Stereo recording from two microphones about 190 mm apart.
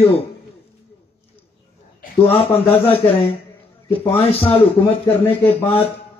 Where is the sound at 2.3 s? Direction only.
30° left (ahead or behind).